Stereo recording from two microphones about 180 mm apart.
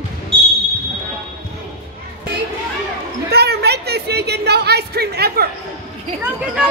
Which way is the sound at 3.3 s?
65° right (ahead or behind).